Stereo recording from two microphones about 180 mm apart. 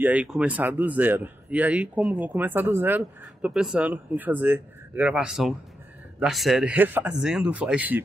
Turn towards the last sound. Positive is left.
turn(degrees=-10)  # may be behind; listen again after turning